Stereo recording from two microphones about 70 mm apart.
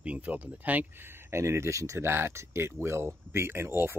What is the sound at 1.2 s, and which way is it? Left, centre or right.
Speech, right.